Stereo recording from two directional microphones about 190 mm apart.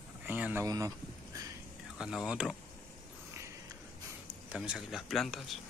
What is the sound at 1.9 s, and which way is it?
Speech, 5° right (ahead or behind).